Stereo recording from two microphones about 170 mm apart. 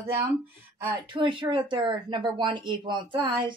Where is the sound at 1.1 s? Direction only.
30° right (ahead or behind).